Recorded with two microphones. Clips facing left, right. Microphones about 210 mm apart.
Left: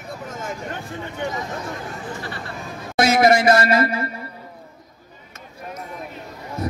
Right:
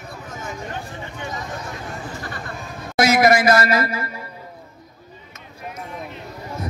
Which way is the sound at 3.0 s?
30° left (ahead or behind).